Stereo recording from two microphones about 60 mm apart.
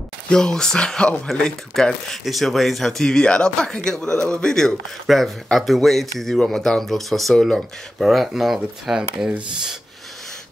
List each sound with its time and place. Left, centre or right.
0.3 s speech: centre